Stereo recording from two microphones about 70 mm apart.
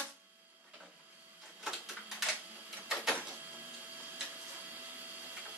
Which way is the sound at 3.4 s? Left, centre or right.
Right.